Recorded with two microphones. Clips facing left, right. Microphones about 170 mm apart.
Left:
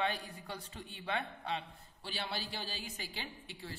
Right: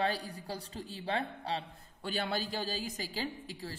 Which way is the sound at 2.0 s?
45° right (ahead or behind).